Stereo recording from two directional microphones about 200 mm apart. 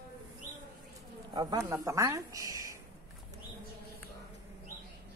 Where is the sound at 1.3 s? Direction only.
20° right (ahead or behind).